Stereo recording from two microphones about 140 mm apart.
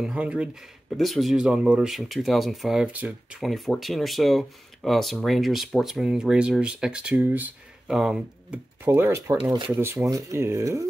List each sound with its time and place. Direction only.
0.0 s speech: 5° right (ahead or behind)
8.8 s speech: 15° right (ahead or behind)
9.4 s speech: 35° right (ahead or behind)
9.8 s speech: 20° right (ahead or behind)